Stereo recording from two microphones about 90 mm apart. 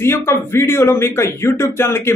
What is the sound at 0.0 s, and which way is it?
Speech, 30° left (ahead or behind).